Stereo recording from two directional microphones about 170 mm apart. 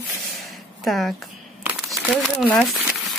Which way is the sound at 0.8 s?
5° left (ahead or behind).